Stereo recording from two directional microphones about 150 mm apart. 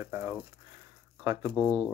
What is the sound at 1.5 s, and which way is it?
Speech, centre (ahead or behind).